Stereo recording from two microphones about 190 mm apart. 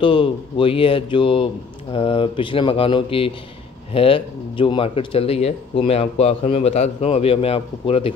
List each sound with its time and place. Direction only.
0.0 s a man's voice: 25° left (ahead or behind)